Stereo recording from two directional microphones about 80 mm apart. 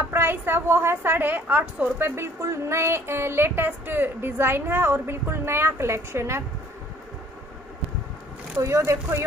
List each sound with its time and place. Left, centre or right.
0.1 s a woman's voice: right
8.6 s a woman's voice: right